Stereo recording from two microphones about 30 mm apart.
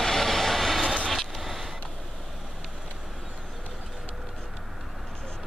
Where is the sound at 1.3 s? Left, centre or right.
Centre.